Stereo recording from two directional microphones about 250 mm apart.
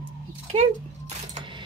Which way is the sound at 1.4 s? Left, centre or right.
Centre.